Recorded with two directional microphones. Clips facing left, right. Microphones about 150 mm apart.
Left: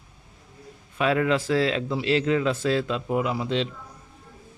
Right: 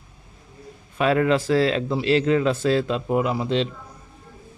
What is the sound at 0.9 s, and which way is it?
A man's voice, 45° right (ahead or behind).